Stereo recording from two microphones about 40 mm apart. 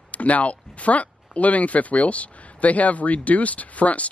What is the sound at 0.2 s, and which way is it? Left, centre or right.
Speech, left.